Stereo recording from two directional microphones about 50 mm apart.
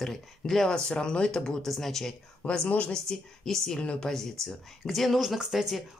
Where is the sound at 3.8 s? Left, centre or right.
Left.